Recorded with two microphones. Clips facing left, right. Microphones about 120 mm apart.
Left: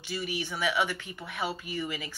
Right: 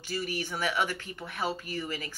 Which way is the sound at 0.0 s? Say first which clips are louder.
Even; 45° right (ahead or behind).